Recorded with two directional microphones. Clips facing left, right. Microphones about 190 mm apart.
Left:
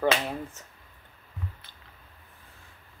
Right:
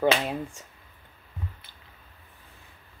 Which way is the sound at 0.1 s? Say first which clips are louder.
Right 2 dB; 20° right (ahead or behind).